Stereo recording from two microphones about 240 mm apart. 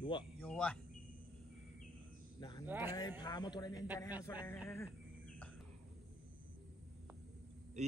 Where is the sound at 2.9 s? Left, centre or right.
Centre.